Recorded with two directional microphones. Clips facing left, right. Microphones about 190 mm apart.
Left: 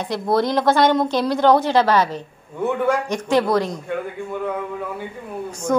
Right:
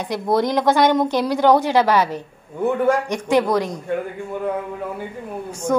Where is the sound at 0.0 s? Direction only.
15° right (ahead or behind).